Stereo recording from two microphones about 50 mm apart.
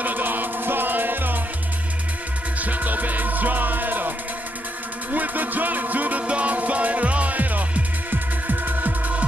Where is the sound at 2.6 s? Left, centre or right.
Right.